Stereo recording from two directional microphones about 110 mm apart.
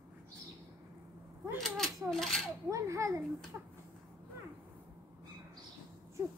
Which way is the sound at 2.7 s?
30° right (ahead or behind).